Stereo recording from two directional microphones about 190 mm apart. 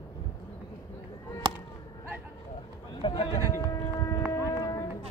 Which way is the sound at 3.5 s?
15° left (ahead or behind).